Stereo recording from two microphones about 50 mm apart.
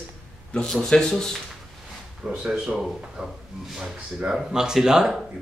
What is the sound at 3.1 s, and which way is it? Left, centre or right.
Speech, centre.